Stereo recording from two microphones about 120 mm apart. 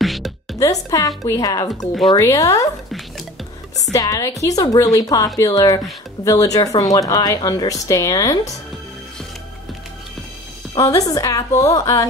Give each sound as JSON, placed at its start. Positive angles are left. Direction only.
{"t": 0.0, "sound": "music", "side_deg": 0}
{"t": 0.6, "sound": "a woman's voice", "side_deg": 30}
{"t": 3.9, "sound": "a woman's voice", "side_deg": 25}
{"t": 10.8, "sound": "a woman's voice", "side_deg": 30}